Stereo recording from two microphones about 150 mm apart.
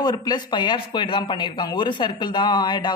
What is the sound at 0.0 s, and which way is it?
Speech, 30° left (ahead or behind).